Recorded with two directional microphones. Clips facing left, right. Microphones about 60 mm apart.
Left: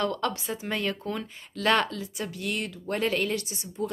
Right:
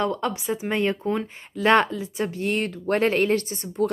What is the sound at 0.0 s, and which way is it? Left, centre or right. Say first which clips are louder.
Speech: right 3 dB; centre.